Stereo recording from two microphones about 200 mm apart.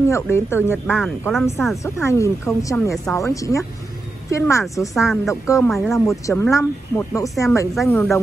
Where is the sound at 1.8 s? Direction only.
15° left (ahead or behind).